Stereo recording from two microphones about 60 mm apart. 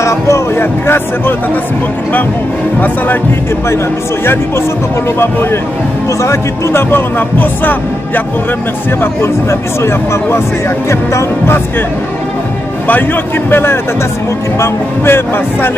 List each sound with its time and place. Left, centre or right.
0.0 s speech: left
0.6 s speech: left
3.6 s speech: left
9.0 s speech: left
12.8 s speech: left